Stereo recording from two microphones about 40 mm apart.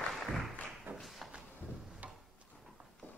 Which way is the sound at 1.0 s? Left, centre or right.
Centre.